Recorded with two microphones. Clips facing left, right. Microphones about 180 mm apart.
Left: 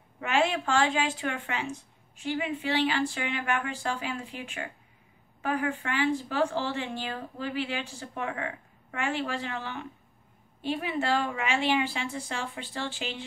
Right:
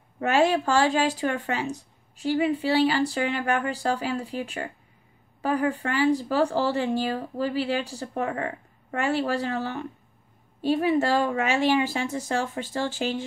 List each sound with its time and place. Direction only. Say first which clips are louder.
0.2 s a woman's voice: right 5 dB; 40° right (ahead or behind)